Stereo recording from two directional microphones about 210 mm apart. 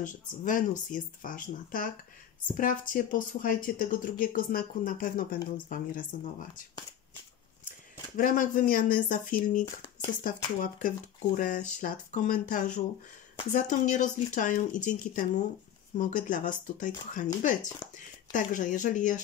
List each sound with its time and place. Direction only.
0.0 s speech: 40° left (ahead or behind)
8.2 s speech: 40° left (ahead or behind)
11.3 s speech: 40° left (ahead or behind)
17.8 s speech: 20° left (ahead or behind)
18.3 s speech: 35° left (ahead or behind)